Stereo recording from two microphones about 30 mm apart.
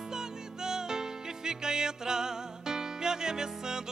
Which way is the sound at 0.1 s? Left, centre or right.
Right.